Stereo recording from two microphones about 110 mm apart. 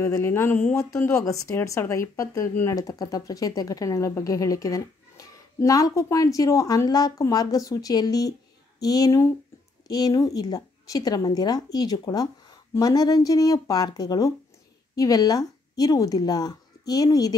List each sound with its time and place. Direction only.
0.0 s speech: 20° left (ahead or behind)